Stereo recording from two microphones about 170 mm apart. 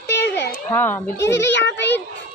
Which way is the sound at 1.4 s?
90° left.